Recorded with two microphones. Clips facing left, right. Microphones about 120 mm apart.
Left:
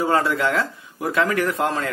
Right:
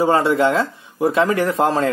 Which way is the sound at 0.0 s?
25° right (ahead or behind).